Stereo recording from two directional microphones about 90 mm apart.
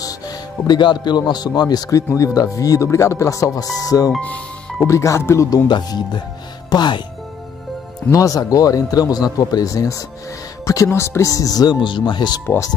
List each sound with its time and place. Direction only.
0.0 s music: 50° left (ahead or behind)
1.3 s speech: 50° left (ahead or behind)
4.2 s music: 15° left (ahead or behind)
4.8 s speech: 35° left (ahead or behind)
5.7 s speech: 55° left (ahead or behind)
8.1 s speech: 40° left (ahead or behind); by 12.4 s 55° left (ahead or behind)
12.4 s speech: 35° left (ahead or behind)